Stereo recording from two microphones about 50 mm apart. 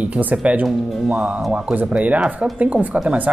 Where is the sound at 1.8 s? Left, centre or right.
Right.